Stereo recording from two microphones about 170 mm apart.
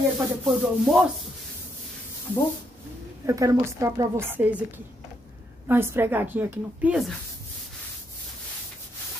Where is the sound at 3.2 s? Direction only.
20° right (ahead or behind).